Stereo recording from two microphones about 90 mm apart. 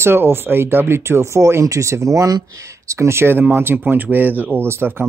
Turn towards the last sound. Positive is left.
turn(degrees=-25)  # may be behind; listen again after turning